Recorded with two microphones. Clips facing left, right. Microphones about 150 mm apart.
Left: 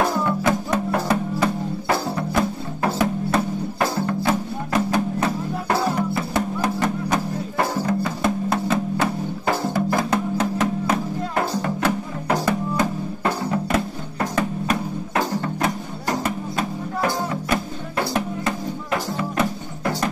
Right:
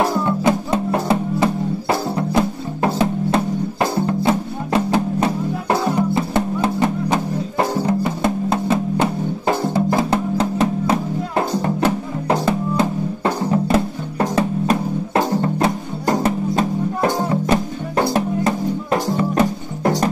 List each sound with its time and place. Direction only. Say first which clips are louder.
0.2 s music: right 3 dB; 25° right (ahead or behind)